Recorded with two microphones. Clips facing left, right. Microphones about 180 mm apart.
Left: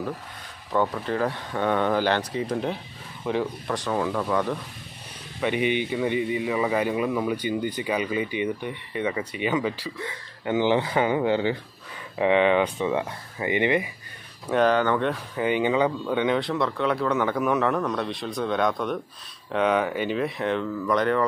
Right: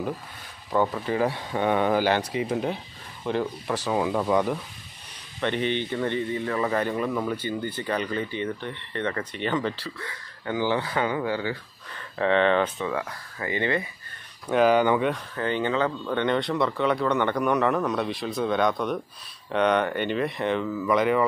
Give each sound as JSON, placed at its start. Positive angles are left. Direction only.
{"t": 0.7, "sound": "speech", "side_deg": -5}
{"t": 3.9, "sound": "speech", "side_deg": -15}
{"t": 5.4, "sound": "a man's voice", "side_deg": 10}
{"t": 10.0, "sound": "speech", "side_deg": 20}
{"t": 12.2, "sound": "a man's voice", "side_deg": 10}
{"t": 14.5, "sound": "speech", "side_deg": -10}
{"t": 15.0, "sound": "speech", "side_deg": 10}